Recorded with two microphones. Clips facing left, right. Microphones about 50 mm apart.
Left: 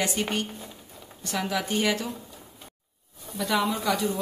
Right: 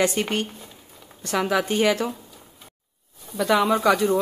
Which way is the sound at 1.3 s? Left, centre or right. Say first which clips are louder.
Right 6 dB; right.